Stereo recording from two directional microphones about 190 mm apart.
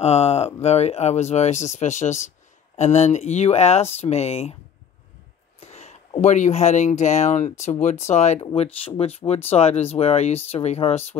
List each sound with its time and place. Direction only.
0.0 s speech: 35° left (ahead or behind)
5.6 s speech: 35° left (ahead or behind)